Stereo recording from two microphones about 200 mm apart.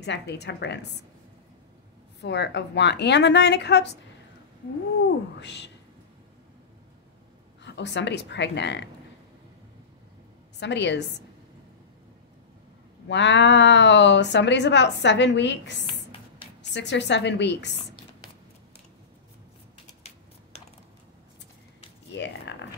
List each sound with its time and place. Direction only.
0.0 s a woman's voice: 60° left (ahead or behind)
2.2 s a woman's voice: 60° left (ahead or behind)
5.4 s a woman's voice: 60° left (ahead or behind)
7.6 s a woman's voice: 60° left (ahead or behind)
10.6 s a woman's voice: 60° left (ahead or behind)
13.1 s a woman's voice: 65° left (ahead or behind)
22.1 s a sound: 60° left (ahead or behind)